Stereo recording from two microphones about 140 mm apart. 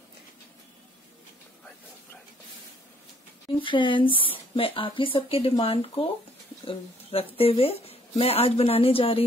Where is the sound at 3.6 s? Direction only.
35° left (ahead or behind).